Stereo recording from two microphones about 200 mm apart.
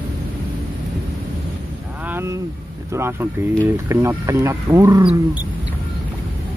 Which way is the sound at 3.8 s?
15° right (ahead or behind).